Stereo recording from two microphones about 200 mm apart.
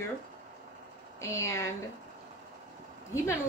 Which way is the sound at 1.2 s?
15° left (ahead or behind).